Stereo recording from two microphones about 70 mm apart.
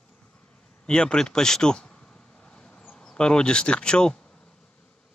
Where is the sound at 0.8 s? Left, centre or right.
Centre.